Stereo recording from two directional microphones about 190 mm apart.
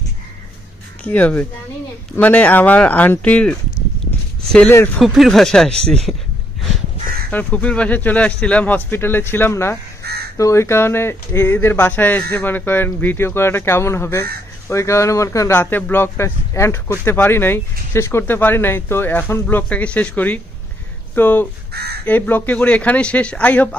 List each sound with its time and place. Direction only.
1.0 s speech: 10° left (ahead or behind)
7.2 s speech: 10° left (ahead or behind)
10.0 s crow: 55° right (ahead or behind)
10.3 s speech: 15° left (ahead or behind)
21.7 s speech: 55° right (ahead or behind)
22.0 s speech: 10° left (ahead or behind)